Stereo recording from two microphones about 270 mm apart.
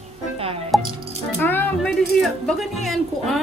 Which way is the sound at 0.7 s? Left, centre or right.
Centre.